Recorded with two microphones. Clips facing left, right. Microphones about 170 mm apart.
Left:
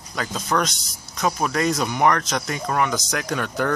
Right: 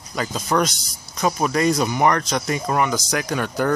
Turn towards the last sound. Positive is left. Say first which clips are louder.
# right 2 dB
turn(degrees=-5)  # may be behind; listen again after turning